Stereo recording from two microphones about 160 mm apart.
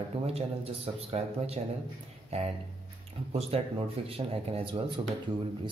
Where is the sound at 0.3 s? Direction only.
40° right (ahead or behind).